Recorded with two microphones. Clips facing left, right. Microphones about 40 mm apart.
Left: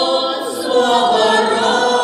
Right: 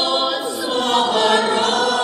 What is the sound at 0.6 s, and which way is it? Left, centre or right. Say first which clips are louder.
Choir: left 6 dB; centre.